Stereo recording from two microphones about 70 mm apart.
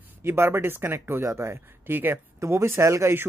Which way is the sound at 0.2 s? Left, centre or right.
Right.